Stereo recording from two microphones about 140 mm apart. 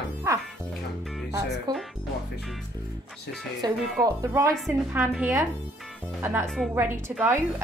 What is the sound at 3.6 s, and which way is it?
Speech, 30° right (ahead or behind).